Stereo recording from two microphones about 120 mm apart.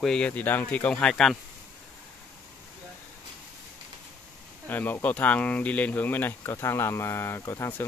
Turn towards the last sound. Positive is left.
turn(degrees=20)  # may be behind; listen again after turning